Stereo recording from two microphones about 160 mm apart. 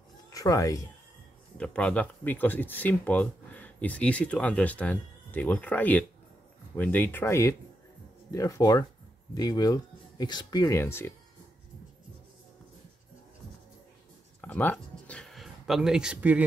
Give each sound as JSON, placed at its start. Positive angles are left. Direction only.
{"t": 0.3, "sound": "speech", "side_deg": 20}
{"t": 1.6, "sound": "speech", "side_deg": 5}
{"t": 14.4, "sound": "a sound", "side_deg": 10}